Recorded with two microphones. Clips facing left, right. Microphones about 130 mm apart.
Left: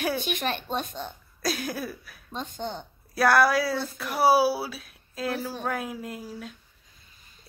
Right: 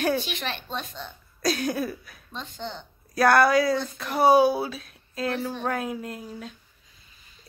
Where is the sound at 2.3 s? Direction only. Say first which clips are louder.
Left 2 dB; 45° left (ahead or behind).